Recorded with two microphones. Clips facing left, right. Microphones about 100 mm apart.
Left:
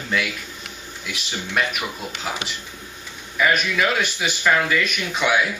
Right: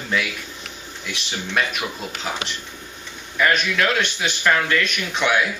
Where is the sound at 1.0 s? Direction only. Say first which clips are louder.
Right 1 dB; centre (ahead or behind).